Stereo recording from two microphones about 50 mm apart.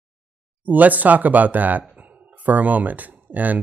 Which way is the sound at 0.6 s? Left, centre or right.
Right.